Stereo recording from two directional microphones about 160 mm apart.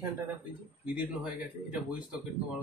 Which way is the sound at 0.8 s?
10° right (ahead or behind).